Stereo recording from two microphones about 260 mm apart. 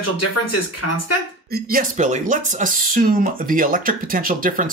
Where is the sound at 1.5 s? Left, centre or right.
Right.